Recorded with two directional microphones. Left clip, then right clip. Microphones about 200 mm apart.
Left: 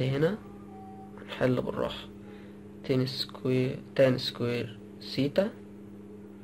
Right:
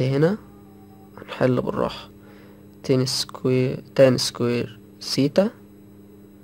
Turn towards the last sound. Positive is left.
turn(degrees=-45)  # may be behind; listen again after turning